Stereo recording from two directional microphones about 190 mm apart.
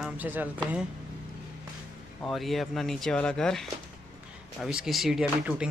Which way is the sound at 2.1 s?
Centre (ahead or behind).